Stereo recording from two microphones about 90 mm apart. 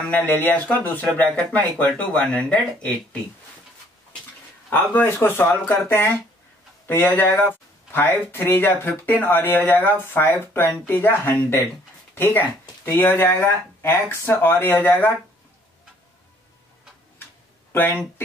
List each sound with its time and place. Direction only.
0.1 s speech: 20° left (ahead or behind)
4.6 s speech: 25° left (ahead or behind)